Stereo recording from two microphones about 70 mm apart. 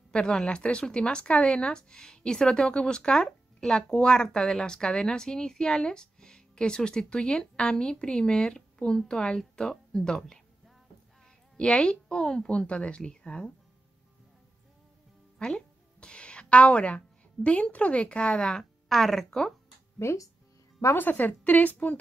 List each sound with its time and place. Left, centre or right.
0.1 s speech: centre
11.5 s speech: centre
15.3 s a woman's voice: centre
20.0 s a woman's voice: left